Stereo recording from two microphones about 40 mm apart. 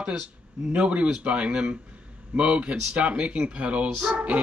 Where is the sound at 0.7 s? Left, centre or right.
Right.